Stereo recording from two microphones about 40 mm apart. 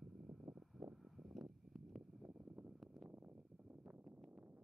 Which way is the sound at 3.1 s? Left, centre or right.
Right.